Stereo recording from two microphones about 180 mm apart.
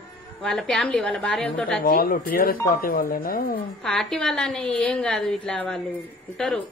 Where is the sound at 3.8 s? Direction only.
5° left (ahead or behind).